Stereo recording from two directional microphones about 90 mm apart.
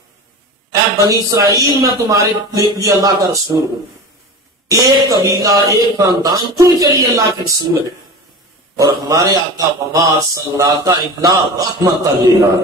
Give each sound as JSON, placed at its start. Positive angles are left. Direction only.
{"t": 0.7, "sound": "speech", "side_deg": -40}
{"t": 4.6, "sound": "speech", "side_deg": -40}
{"t": 9.0, "sound": "speech", "side_deg": -45}